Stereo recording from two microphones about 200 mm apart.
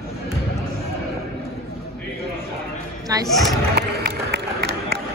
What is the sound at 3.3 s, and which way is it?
Speech, centre (ahead or behind).